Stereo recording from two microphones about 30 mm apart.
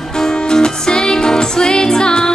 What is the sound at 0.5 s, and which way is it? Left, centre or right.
Music, left.